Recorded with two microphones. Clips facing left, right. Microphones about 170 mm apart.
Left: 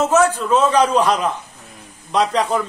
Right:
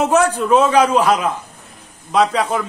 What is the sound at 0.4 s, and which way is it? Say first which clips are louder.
A man's voice: right 2 dB; 10° right (ahead or behind).